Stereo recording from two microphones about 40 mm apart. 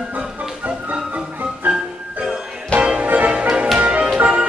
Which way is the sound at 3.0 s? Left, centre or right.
Right.